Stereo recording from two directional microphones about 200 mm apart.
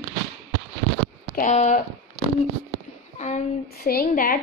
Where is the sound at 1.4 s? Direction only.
35° left (ahead or behind).